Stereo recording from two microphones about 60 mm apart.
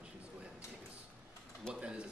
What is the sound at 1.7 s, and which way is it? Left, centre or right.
Speech, centre.